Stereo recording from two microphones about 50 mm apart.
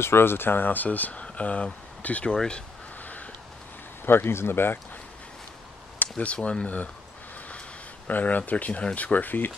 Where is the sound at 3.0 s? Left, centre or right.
Left.